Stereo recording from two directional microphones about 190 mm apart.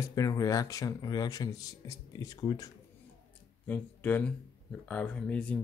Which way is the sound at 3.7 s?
10° left (ahead or behind).